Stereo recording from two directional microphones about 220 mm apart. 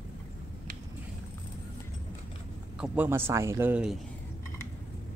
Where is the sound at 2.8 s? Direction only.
5° right (ahead or behind).